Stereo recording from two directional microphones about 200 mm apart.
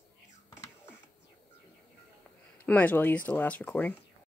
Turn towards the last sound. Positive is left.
turn(degrees=10)  # may be behind; listen again after turning